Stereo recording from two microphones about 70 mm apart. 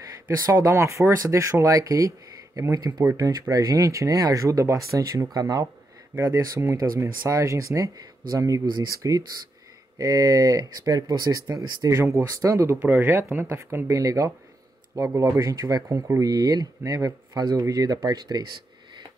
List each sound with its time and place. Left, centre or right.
0.5 s speech: right
11.9 s speech: right
12.8 s speech: right
13.4 s speech: right